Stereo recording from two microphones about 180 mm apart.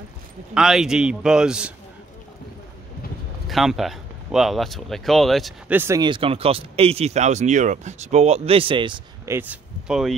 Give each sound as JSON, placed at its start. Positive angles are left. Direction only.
{"t": 0.6, "sound": "speech", "side_deg": -5}
{"t": 3.4, "sound": "speech", "side_deg": 0}
{"t": 5.8, "sound": "speech", "side_deg": -20}
{"t": 9.3, "sound": "speech", "side_deg": -10}